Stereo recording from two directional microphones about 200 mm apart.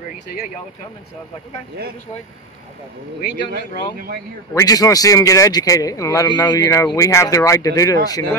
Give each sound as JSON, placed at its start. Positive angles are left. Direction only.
{"t": 3.5, "sound": "speech", "side_deg": -45}
{"t": 4.6, "sound": "a man's voice", "side_deg": 15}